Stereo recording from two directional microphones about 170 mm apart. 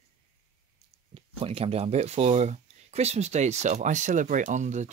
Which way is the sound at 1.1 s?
35° right (ahead or behind).